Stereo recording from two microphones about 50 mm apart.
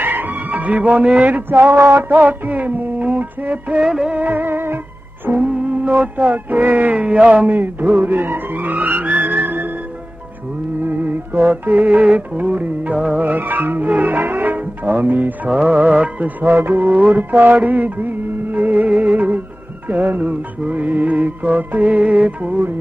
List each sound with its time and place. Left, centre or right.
0.0 s music: right
1.5 s a sound: right
1.8 s a sound: right
2.0 s music: right
3.8 s music: centre
4.1 s music: right
5.4 s speech: right
7.4 s music: right
10.8 s music: right
15.5 s speech: right
16.3 s music: right
20.6 s speech: right